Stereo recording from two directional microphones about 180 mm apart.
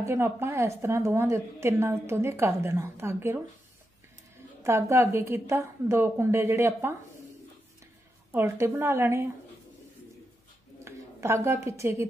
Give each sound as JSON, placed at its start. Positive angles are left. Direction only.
{"t": 0.0, "sound": "a woman's voice", "side_deg": -15}
{"t": 4.6, "sound": "a woman's voice", "side_deg": -15}
{"t": 8.3, "sound": "a woman's voice", "side_deg": -15}
{"t": 10.8, "sound": "a woman's voice", "side_deg": -15}